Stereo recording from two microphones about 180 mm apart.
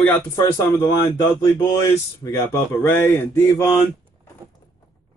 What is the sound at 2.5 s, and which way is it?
Speech, 15° left (ahead or behind).